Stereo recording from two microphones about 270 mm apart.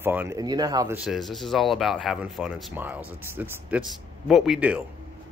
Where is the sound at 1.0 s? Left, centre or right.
Centre.